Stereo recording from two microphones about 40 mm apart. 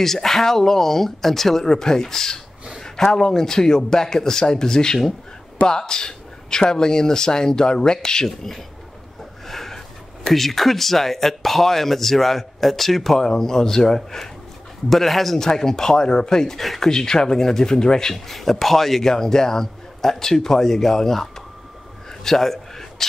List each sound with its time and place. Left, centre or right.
0.0 s a man's voice: centre
9.5 s a sound: centre
10.2 s a man's voice: centre
16.6 s speech: centre
16.9 s a man's voice: centre
18.3 s a man's voice: centre
22.2 s a sound: centre